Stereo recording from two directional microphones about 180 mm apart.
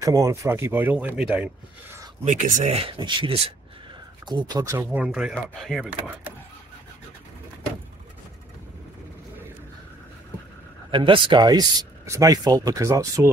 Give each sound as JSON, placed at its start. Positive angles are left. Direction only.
{"t": 0.0, "sound": "speech", "side_deg": -20}
{"t": 2.2, "sound": "speech", "side_deg": -45}
{"t": 10.9, "sound": "speech", "side_deg": -25}